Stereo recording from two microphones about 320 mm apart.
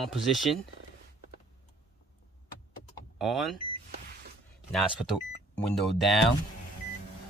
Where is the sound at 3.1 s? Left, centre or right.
Centre.